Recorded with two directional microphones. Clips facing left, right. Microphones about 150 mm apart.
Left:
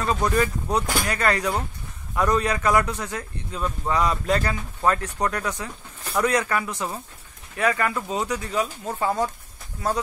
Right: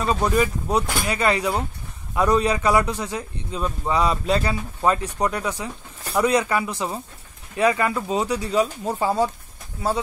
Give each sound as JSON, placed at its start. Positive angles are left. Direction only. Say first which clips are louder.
{"t": 0.0, "sound": "a man's voice", "louder": "right 2 dB", "side_deg": -10}